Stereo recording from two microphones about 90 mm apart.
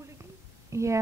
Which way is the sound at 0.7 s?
35° right (ahead or behind).